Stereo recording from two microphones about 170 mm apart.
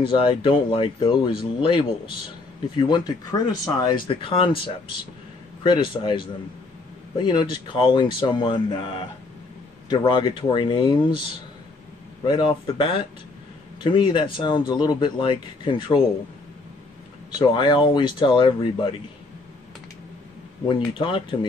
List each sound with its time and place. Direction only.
0.0 s speech: 30° left (ahead or behind)
12.3 s speech: 30° left (ahead or behind)
13.9 s speech: 25° left (ahead or behind)
17.4 s speech: 25° left (ahead or behind)
20.6 s speech: 30° left (ahead or behind)